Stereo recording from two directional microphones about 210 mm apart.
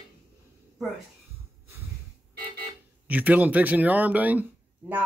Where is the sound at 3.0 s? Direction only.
5° right (ahead or behind).